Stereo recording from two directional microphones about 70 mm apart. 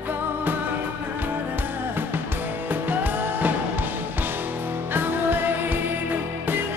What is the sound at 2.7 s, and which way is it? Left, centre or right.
Music, right.